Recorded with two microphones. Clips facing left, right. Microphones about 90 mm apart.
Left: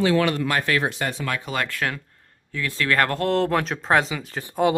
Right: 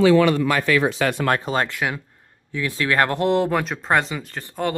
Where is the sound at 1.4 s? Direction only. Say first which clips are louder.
Right 4 dB; 30° right (ahead or behind).